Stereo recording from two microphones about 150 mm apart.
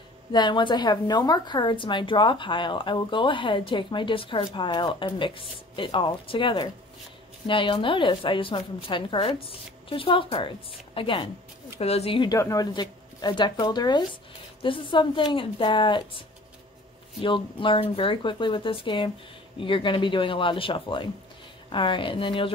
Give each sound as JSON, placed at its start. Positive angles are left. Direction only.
{"t": 0.3, "sound": "a woman's voice", "side_deg": 30}
{"t": 12.3, "sound": "a woman's voice", "side_deg": 20}